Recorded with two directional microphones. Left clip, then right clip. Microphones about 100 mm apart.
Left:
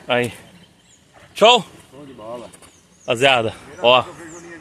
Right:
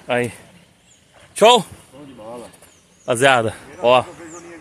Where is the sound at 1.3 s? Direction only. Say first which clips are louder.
Right 1 dB; 50° right (ahead or behind).